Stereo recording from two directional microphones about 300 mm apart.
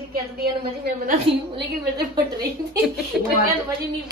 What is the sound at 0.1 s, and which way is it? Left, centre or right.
A woman's voice, right.